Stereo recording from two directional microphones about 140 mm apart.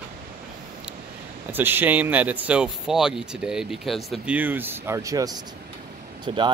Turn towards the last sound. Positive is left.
turn(degrees=-35)  # may be behind; listen again after turning